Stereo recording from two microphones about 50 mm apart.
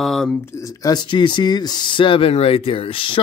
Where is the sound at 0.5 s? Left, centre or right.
Left.